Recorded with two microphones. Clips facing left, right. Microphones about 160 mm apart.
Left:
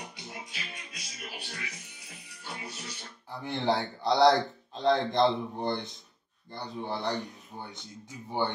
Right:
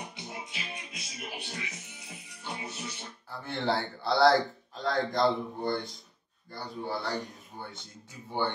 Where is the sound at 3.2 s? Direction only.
15° left (ahead or behind).